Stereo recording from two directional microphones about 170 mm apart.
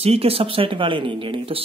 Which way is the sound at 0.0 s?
35° right (ahead or behind).